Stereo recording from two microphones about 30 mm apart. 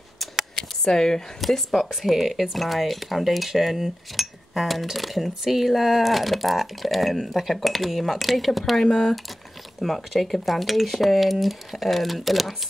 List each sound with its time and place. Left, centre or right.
0.6 s a sound: centre
1.7 s speech: centre
2.2 s speech: centre
2.5 s speech: centre
8.8 s speech: centre
9.8 s speech: centre